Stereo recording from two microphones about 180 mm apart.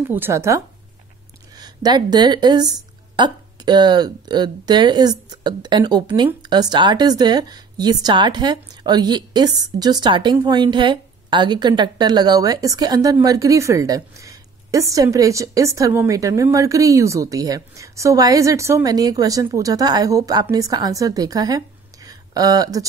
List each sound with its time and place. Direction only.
0.0 s a woman's voice: 10° right (ahead or behind)